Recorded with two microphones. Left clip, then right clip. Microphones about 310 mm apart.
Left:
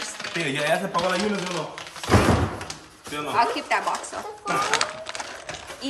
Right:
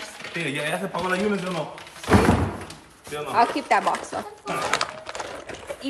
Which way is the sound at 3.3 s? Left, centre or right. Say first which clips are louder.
Right 2 dB; centre.